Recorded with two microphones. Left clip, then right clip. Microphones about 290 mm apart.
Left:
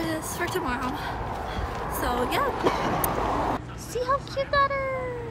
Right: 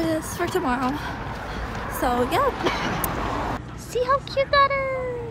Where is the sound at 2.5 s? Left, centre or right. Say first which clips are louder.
Right 1 dB; left.